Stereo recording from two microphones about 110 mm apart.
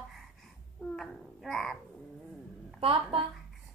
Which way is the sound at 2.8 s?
55° right (ahead or behind).